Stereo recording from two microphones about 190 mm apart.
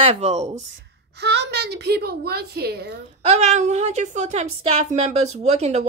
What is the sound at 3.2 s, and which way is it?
A woman's voice, 35° right (ahead or behind).